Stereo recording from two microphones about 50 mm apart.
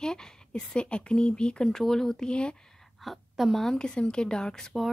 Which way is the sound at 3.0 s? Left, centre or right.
Centre.